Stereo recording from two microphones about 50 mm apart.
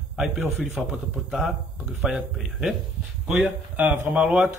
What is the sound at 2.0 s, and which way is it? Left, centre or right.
A man's voice, centre.